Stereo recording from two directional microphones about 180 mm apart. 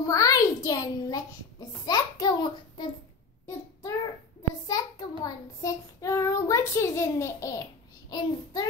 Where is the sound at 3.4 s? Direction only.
20° left (ahead or behind).